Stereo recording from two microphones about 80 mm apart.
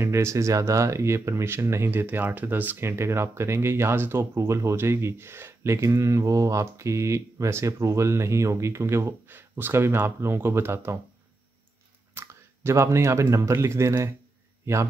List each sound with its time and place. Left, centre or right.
0.0 s speech: right
12.1 s speech: right